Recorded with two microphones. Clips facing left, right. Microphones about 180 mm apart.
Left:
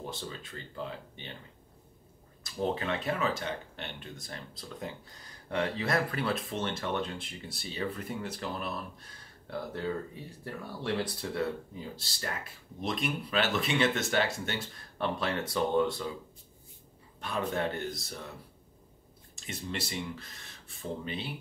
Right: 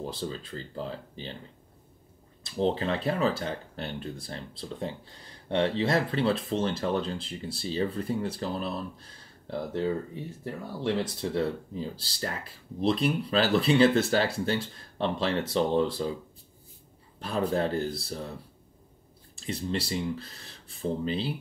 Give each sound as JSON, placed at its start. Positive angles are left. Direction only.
{"t": 0.0, "sound": "speech", "side_deg": -30}
{"t": 2.4, "sound": "speech", "side_deg": -30}
{"t": 17.2, "sound": "speech", "side_deg": -35}
{"t": 19.3, "sound": "speech", "side_deg": -30}